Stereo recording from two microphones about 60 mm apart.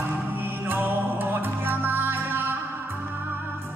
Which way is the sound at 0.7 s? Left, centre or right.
Right.